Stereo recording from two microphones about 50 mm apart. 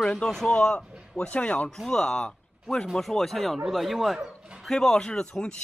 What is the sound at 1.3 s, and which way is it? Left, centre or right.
Speech, left.